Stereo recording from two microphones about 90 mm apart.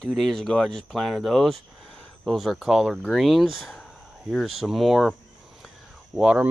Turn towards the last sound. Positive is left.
turn(degrees=-15)  # may be behind; listen again after turning